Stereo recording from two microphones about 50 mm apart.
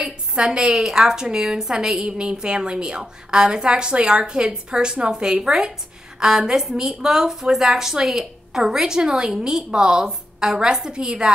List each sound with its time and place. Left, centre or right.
0.0 s a woman's voice: centre